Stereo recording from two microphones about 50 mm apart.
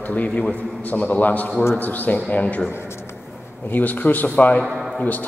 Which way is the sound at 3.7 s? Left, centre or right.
Left.